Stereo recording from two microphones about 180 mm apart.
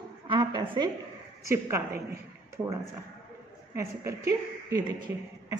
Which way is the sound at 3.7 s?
15° right (ahead or behind).